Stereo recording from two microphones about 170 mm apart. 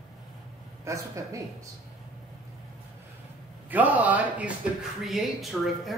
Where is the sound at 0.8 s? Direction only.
15° right (ahead or behind).